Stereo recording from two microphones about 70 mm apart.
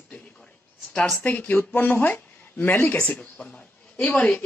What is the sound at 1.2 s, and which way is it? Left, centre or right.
Speech, left.